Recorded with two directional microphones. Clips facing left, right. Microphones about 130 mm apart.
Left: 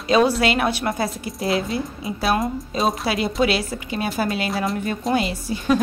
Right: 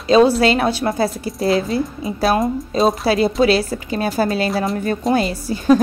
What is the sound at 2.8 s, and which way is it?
Speech, centre (ahead or behind).